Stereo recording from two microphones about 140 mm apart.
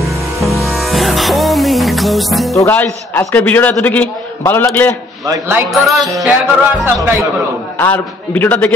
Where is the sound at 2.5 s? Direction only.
15° left (ahead or behind).